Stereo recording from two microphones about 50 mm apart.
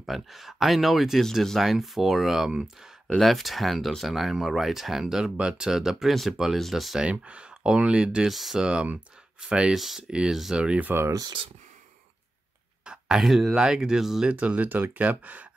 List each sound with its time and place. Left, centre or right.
0.0 s speech: centre
7.0 s speech: right
8.3 s speech: centre
8.5 s speech: centre
9.8 s speech: centre
10.0 s speech: centre
12.8 s a sound: centre
13.2 s speech: centre
13.6 s speech: centre
14.2 s speech: right